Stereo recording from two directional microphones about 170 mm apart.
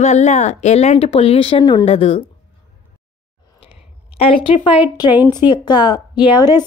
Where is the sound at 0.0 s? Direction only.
40° left (ahead or behind).